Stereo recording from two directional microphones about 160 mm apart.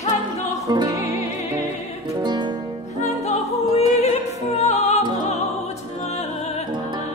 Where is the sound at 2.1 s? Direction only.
30° right (ahead or behind).